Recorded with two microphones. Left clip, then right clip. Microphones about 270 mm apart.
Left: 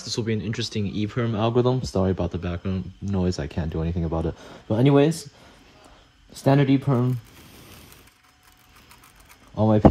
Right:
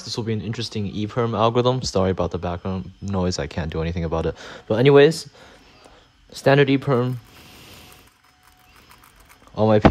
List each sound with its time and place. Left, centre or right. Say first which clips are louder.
0.0 s speech: even; centre
1.6 s speech: right 3 dB; left
2.3 s speech: right 5 dB; centre
3.5 s speech: right 3 dB; left
6.3 s speech: right 4 dB; left
9.6 s speech: right 4 dB; left